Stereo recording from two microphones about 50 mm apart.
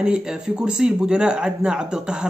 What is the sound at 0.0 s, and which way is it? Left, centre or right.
Speech, centre.